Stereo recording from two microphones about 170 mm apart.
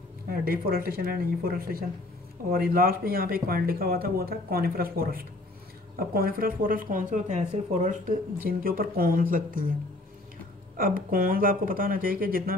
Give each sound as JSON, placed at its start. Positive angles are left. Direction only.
{"t": 0.3, "sound": "speech", "side_deg": -60}
{"t": 10.8, "sound": "speech", "side_deg": -55}